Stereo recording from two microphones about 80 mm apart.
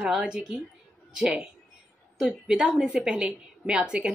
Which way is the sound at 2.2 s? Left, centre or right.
Centre.